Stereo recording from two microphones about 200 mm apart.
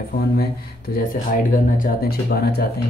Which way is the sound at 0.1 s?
55° left (ahead or behind).